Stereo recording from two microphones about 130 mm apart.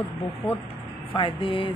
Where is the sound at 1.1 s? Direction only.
40° left (ahead or behind).